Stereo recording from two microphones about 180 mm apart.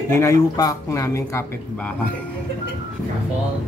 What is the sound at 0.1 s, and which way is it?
Speech, 15° left (ahead or behind).